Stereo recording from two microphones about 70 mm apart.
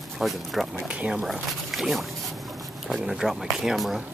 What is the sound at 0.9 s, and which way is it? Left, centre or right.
Speech, centre.